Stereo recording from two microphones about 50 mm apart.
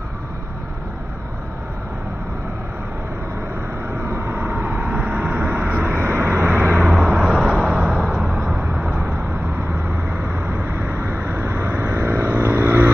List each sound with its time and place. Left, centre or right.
4.0 s vehicle: right
5.9 s vehicle: right
6.4 s vehicle: right
6.8 s vehicle: centre
8.8 s vehicle: right
9.7 s vehicle: right